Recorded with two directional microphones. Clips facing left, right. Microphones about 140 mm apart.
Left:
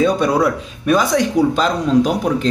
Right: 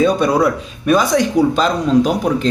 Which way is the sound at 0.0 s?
20° right (ahead or behind).